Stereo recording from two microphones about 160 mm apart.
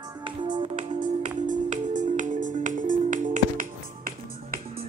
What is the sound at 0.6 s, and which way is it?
Music, 45° right (ahead or behind).